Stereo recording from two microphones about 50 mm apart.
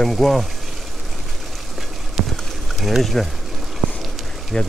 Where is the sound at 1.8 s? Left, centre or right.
Centre.